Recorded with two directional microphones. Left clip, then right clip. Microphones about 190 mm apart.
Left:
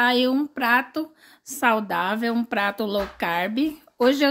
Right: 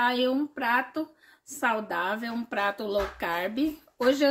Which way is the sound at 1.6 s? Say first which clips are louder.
Left 6 dB; 50° left (ahead or behind).